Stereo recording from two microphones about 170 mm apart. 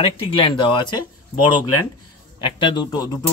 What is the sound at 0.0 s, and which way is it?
Speech, 30° left (ahead or behind).